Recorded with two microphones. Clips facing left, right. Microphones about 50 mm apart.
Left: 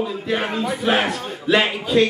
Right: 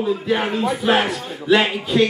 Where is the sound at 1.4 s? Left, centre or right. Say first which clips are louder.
Right 2 dB; centre.